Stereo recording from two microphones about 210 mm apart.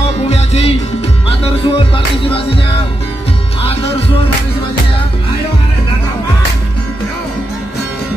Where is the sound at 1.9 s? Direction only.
25° left (ahead or behind).